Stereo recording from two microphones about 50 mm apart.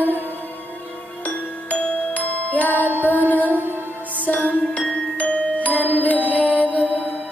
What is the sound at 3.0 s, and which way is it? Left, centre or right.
Mantra, left.